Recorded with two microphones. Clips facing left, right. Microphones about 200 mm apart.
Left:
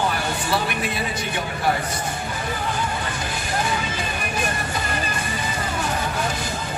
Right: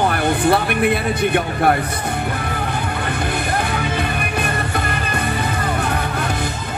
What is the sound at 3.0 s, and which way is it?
Music, 60° right (ahead or behind).